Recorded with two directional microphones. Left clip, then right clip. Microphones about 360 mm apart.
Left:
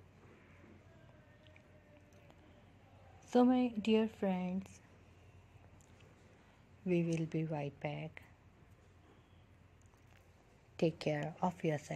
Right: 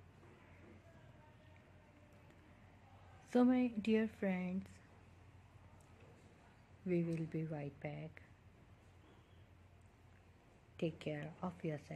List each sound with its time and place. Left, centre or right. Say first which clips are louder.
3.3 s speech: left 4 dB; centre
6.9 s a woman's voice: left 4 dB; centre
10.8 s a woman's voice: left 8 dB; centre